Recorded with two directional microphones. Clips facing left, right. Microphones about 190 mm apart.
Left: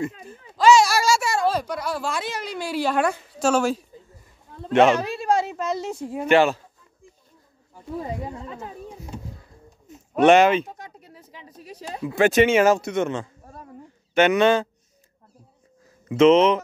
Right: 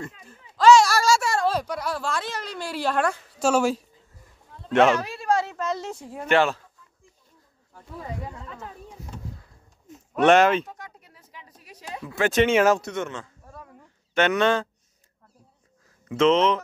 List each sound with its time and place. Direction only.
0.0 s a sound: 10° left (ahead or behind)
3.3 s speech: 5° right (ahead or behind)
4.9 s a sound: 25° left (ahead or behind); by 6.6 s 5° left (ahead or behind)
8.0 s speech: 25° left (ahead or behind)
10.2 s speech: centre (ahead or behind)
10.7 s a sound: 25° left (ahead or behind)
12.0 s speech: 15° left (ahead or behind)
12.4 s speech: centre (ahead or behind)
12.9 s speech: 20° left (ahead or behind)
14.1 s speech: 10° left (ahead or behind)
16.1 s speech: 10° left (ahead or behind)